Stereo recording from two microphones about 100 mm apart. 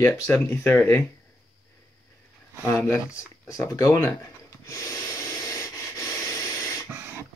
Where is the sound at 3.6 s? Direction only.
30° left (ahead or behind).